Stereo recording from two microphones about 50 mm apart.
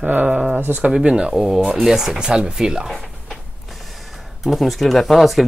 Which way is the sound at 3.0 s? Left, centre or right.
Centre.